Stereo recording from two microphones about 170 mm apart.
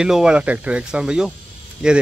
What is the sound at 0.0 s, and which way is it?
Speech, 5° right (ahead or behind).